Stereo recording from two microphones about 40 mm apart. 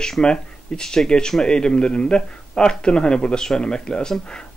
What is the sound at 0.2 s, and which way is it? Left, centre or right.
Speech, centre.